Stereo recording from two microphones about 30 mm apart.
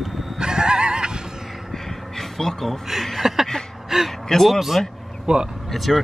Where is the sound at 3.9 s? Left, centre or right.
Centre.